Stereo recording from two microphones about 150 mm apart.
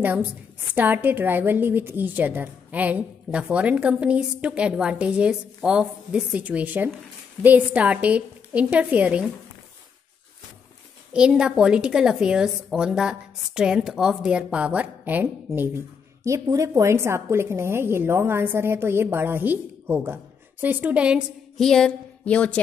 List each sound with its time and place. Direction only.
0.0 s a woman's voice: 10° right (ahead or behind)
11.1 s a woman's voice: 5° right (ahead or behind)
21.5 s speech: 5° left (ahead or behind)